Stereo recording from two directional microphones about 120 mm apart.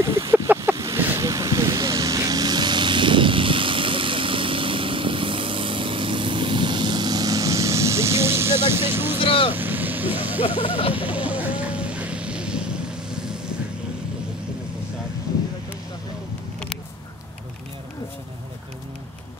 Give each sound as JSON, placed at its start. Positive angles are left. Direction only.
{"t": 0.0, "sound": "a sound", "side_deg": -25}
{"t": 9.2, "sound": "vehicle", "side_deg": 50}
{"t": 9.5, "sound": "vehicle", "side_deg": -15}
{"t": 10.4, "sound": "vehicle", "side_deg": 50}
{"t": 11.0, "sound": "vehicle", "side_deg": -10}